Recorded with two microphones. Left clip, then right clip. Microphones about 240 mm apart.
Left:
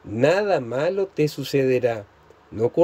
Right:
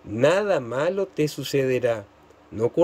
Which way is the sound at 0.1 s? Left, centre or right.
Centre.